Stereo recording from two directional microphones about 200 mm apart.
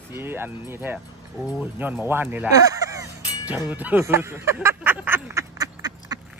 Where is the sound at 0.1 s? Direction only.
10° right (ahead or behind).